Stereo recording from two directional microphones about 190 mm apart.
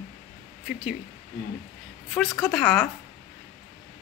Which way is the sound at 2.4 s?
5° left (ahead or behind).